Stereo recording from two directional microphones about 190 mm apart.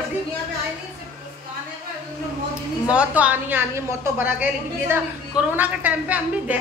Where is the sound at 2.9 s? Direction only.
5° right (ahead or behind).